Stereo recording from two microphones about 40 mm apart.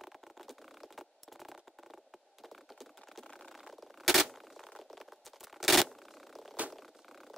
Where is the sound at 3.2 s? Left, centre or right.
Centre.